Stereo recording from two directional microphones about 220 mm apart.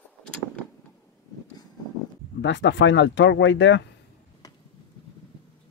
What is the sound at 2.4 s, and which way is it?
Speech, 55° left (ahead or behind).